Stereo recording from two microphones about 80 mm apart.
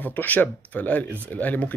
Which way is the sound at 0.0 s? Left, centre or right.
Left.